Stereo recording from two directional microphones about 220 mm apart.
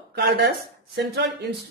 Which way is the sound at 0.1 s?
50° right (ahead or behind).